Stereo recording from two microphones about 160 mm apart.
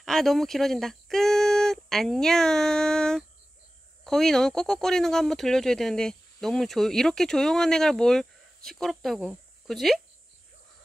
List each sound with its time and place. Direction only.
0.0 s speech: centre (ahead or behind)